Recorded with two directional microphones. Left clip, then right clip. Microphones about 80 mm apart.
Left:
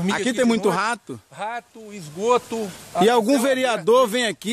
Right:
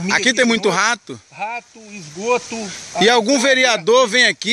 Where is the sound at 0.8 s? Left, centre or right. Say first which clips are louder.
Right 6 dB; centre.